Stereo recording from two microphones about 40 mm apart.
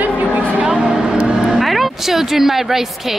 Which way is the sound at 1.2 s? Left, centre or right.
Centre.